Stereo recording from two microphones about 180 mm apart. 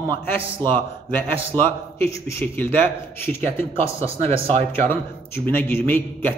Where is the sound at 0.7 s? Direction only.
10° left (ahead or behind).